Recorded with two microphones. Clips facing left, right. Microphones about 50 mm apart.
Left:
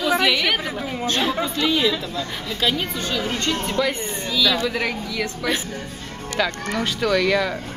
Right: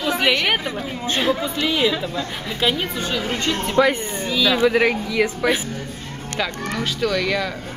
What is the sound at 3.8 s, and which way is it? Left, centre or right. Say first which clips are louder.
Speech: right 5 dB; right.